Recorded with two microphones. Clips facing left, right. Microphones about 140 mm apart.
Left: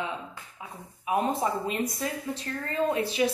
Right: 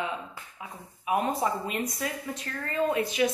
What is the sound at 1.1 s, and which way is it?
A woman's voice, 30° left (ahead or behind).